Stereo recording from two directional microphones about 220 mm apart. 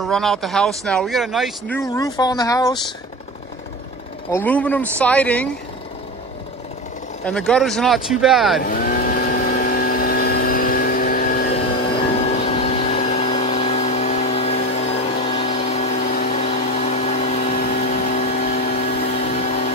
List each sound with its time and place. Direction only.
0.0 s speech: centre (ahead or behind)
1.9 s speech: 15° left (ahead or behind)
4.3 s speech: 10° left (ahead or behind)
7.2 s speech: 5° left (ahead or behind)
8.5 s vehicle: 40° left (ahead or behind)
11.9 s vehicle: 25° left (ahead or behind)
18.8 s vacuum cleaner: 35° left (ahead or behind)